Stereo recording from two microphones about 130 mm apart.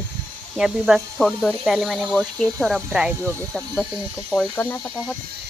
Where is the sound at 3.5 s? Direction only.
5° left (ahead or behind).